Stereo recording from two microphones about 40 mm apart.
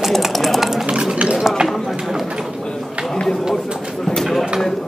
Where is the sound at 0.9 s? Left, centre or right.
Right.